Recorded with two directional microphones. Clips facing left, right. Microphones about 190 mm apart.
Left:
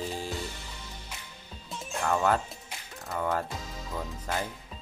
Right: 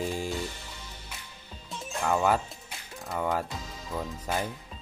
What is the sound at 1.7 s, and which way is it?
Music, 5° right (ahead or behind).